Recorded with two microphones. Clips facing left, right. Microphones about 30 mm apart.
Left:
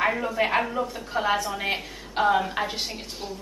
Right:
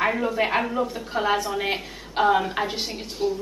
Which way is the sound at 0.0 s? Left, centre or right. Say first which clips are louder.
Right 1 dB; centre.